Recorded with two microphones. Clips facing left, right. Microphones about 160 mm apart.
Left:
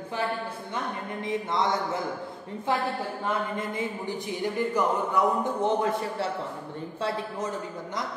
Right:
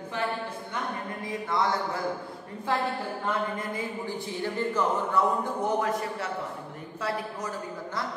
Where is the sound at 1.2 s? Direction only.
20° left (ahead or behind).